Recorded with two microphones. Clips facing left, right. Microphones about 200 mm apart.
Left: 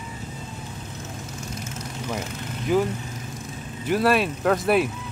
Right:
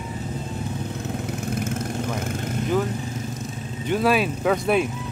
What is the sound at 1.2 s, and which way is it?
Vehicle, 60° right (ahead or behind).